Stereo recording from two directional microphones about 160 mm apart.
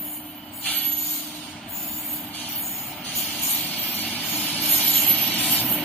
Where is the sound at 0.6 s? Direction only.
10° left (ahead or behind).